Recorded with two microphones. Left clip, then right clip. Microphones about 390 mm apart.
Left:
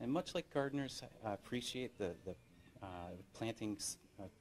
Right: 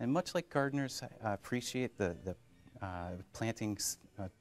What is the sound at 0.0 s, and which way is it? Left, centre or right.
Speech, right.